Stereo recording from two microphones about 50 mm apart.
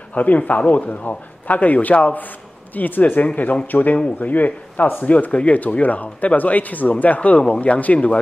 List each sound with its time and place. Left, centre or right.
0.1 s a man's voice: left